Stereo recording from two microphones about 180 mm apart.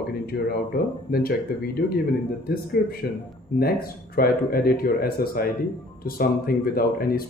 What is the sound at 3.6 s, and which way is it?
Speech, 55° left (ahead or behind).